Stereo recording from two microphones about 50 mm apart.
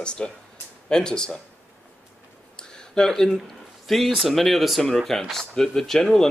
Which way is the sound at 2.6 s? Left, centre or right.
Centre.